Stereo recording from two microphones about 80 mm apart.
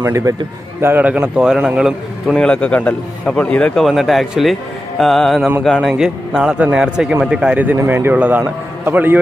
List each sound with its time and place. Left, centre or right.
0.0 s a man's voice: right
0.8 s a man's voice: right
2.3 s a man's voice: centre
3.7 s speech: centre
5.8 s a man's voice: centre